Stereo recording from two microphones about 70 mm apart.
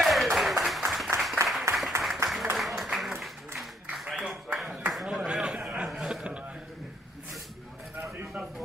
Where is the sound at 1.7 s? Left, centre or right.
Right.